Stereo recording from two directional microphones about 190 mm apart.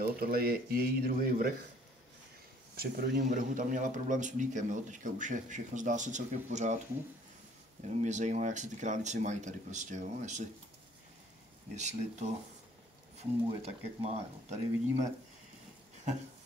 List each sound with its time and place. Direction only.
0.0 s speech: 50° right (ahead or behind)
2.7 s a man's voice: 50° right (ahead or behind)
8.0 s a man's voice: 40° right (ahead or behind)
11.7 s a man's voice: 35° right (ahead or behind)
13.6 s a man's voice: 35° right (ahead or behind)